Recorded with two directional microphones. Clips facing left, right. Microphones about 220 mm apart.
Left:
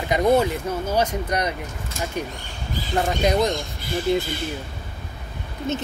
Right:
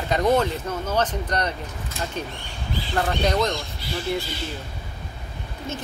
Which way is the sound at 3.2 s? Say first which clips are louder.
Left 3 dB; 10° left (ahead or behind).